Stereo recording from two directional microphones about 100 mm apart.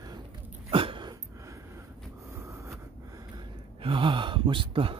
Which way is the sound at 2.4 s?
30° right (ahead or behind).